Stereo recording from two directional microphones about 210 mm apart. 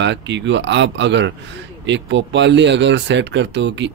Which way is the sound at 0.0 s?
60° right (ahead or behind).